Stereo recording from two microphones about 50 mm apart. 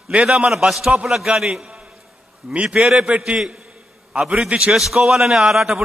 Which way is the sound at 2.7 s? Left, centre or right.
Centre.